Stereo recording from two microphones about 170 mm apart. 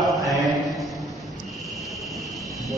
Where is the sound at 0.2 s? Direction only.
Centre (ahead or behind).